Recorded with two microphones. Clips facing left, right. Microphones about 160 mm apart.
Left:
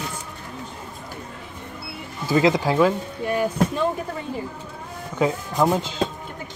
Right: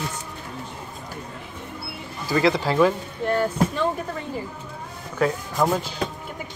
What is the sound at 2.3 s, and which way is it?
Speech, 15° left (ahead or behind).